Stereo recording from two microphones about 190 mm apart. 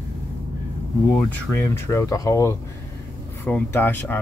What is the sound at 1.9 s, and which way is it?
Speech, 15° left (ahead or behind).